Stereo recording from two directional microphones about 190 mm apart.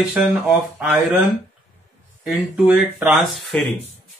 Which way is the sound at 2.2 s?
5° right (ahead or behind).